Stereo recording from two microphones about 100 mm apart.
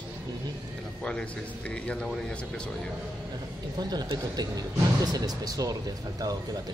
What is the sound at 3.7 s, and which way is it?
Speech, 45° right (ahead or behind).